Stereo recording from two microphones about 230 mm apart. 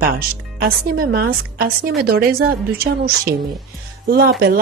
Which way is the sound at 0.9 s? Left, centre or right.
Right.